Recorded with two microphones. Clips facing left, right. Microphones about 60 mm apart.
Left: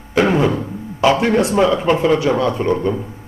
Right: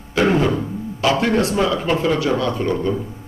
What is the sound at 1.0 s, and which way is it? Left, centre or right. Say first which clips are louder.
A man's voice: left 3 dB; left.